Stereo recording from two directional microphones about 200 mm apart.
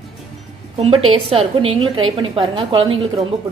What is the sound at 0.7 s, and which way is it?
A woman's voice, 30° right (ahead or behind).